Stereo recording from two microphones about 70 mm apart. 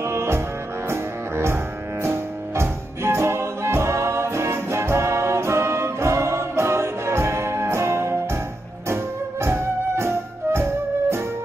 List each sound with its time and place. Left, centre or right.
0.0 s music: right